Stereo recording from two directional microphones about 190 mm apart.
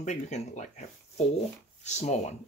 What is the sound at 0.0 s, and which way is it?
Speech, 40° left (ahead or behind).